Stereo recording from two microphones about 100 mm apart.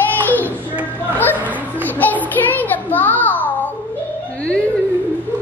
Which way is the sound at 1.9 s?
15° left (ahead or behind).